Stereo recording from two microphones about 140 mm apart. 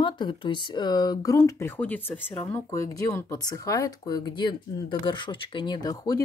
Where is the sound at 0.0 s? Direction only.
35° left (ahead or behind).